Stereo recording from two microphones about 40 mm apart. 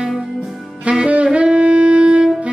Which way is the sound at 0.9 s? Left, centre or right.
Right.